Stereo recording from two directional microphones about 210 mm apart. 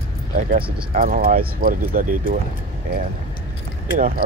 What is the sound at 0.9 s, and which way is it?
Speech, 45° right (ahead or behind).